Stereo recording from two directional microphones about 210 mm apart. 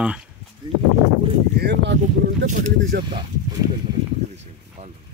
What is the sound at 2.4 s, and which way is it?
Speech, 40° right (ahead or behind).